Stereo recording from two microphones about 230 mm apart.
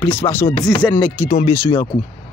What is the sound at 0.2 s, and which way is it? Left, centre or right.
Speech, centre.